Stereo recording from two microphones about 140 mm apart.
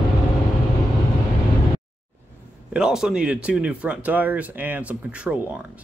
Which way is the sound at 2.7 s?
5° right (ahead or behind).